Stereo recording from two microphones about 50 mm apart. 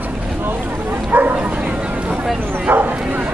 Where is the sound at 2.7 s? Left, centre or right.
Right.